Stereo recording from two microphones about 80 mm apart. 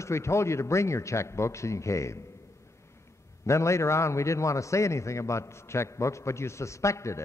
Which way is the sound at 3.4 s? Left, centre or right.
Left.